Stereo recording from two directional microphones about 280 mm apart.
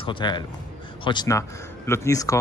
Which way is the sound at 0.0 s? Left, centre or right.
Centre.